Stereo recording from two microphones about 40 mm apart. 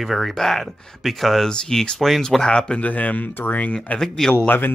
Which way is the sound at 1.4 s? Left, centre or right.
Centre.